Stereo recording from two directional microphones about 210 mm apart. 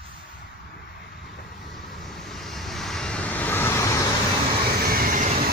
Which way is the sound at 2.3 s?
Centre (ahead or behind).